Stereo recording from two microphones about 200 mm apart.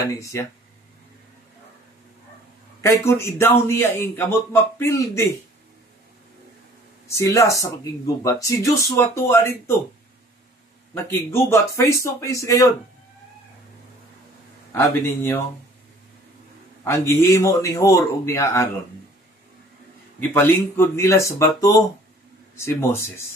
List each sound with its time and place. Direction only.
0.1 s a man's voice: 15° left (ahead or behind)
2.8 s a man's voice: 10° left (ahead or behind)
7.1 s a man's voice: 15° left (ahead or behind)
11.1 s a man's voice: 10° left (ahead or behind)
14.7 s a man's voice: 10° left (ahead or behind)
16.8 s a man's voice: 15° left (ahead or behind)
20.2 s a man's voice: 10° left (ahead or behind)